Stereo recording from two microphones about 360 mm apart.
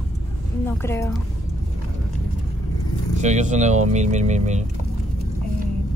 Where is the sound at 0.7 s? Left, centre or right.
Centre.